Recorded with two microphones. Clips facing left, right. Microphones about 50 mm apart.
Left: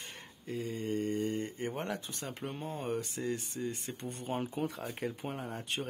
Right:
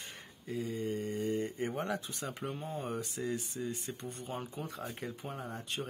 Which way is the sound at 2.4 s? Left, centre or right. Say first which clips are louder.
Left 2 dB; centre.